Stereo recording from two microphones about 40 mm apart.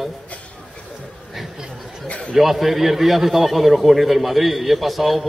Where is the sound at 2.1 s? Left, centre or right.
Left.